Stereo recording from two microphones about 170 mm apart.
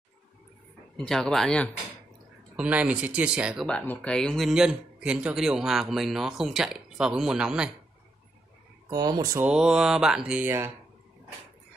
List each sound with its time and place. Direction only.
0.9 s speech: 5° left (ahead or behind)
2.5 s speech: 10° right (ahead or behind)
3.6 s speech: 10° left (ahead or behind)
8.9 s speech: 20° right (ahead or behind)
9.5 s speech: 5° right (ahead or behind)